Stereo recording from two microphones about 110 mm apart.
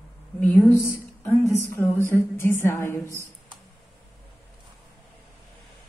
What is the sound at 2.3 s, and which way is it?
Music, 20° left (ahead or behind).